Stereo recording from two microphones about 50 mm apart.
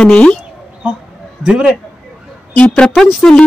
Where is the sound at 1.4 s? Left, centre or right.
Centre.